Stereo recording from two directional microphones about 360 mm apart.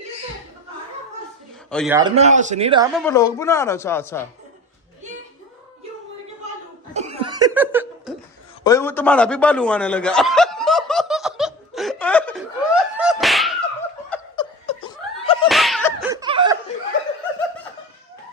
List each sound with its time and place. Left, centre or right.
1.7 s a man's voice: centre
2.0 s a man's voice: centre
3.0 s a woman's voice: centre
7.0 s laughter: centre
8.6 s snicker: centre
14.1 s laughter: centre
15.4 s laughter: centre